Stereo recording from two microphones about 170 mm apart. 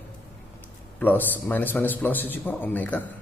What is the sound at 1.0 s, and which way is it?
A man's voice, 10° left (ahead or behind).